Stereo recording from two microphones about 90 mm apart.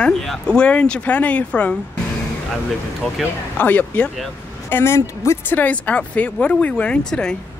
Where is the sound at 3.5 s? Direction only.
20° left (ahead or behind).